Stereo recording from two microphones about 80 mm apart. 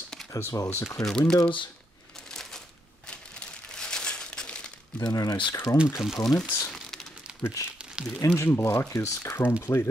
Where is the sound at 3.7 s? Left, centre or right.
Centre.